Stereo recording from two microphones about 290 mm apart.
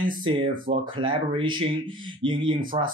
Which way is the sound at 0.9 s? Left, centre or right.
Centre.